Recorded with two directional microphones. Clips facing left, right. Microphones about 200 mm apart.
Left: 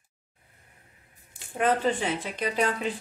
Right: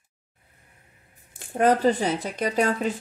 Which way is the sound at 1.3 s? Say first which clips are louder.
Right 5 dB; 40° right (ahead or behind).